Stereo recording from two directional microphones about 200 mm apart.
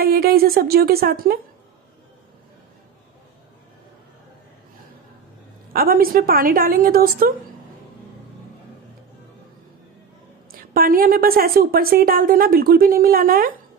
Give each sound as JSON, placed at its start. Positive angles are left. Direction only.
{"t": 0.0, "sound": "a woman's voice", "side_deg": -45}
{"t": 5.7, "sound": "a woman's voice", "side_deg": -45}
{"t": 10.5, "sound": "a woman's voice", "side_deg": -45}